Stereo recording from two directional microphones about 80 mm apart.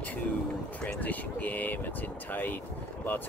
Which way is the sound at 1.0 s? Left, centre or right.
Centre.